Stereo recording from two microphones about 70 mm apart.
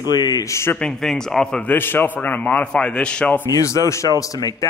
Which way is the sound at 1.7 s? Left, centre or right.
Left.